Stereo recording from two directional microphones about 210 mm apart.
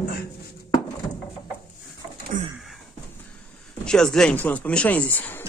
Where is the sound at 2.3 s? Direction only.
40° right (ahead or behind).